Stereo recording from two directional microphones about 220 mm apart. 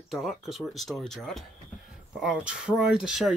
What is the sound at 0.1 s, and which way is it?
Speech, centre (ahead or behind).